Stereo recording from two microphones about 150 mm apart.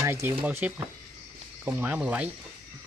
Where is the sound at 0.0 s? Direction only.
20° right (ahead or behind).